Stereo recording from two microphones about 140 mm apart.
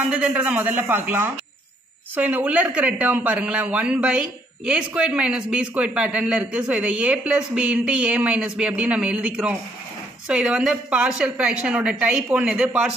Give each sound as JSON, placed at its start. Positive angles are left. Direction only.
{"t": 0.1, "sound": "speech", "side_deg": -10}